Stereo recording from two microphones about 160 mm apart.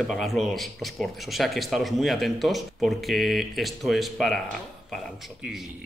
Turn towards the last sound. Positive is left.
turn(degrees=0)  # may be behind; listen again after turning